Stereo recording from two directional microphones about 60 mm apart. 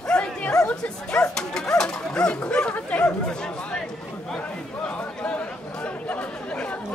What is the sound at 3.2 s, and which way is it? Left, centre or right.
Chatter, centre.